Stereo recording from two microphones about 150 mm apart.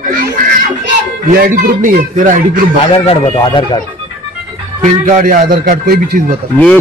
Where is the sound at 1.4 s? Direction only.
75° right (ahead or behind); by 2.6 s 60° right (ahead or behind).